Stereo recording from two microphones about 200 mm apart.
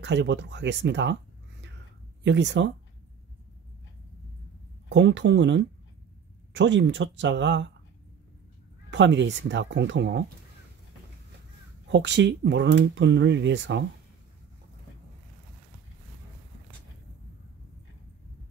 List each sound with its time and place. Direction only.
0.0 s speech: 65° right (ahead or behind)
2.2 s speech: 65° right (ahead or behind)
4.8 s speech: 65° right (ahead or behind)
8.9 s speech: 65° right (ahead or behind)
11.9 s speech: 60° right (ahead or behind)